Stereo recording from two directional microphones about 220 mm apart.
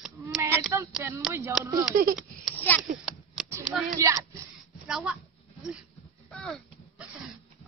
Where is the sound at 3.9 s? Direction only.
15° right (ahead or behind).